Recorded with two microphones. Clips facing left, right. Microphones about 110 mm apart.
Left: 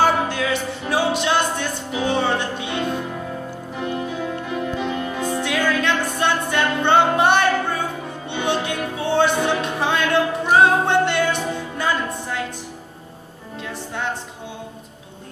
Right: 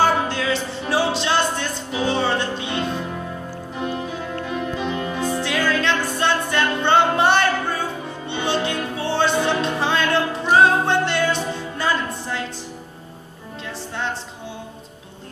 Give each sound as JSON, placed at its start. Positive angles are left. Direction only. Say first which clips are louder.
{"t": 0.0, "sound": "music", "louder": "even", "side_deg": 15}
{"t": 4.4, "sound": "music", "louder": "left 1 dB", "side_deg": 10}